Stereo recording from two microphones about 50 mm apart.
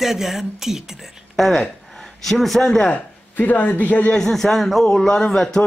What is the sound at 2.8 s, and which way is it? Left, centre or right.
Speech, left.